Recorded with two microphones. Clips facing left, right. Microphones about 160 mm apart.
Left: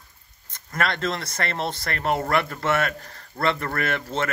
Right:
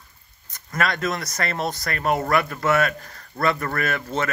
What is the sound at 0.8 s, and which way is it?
Speech, 30° left (ahead or behind).